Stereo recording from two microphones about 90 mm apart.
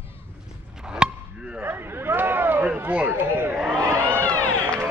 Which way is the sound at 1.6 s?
25° right (ahead or behind).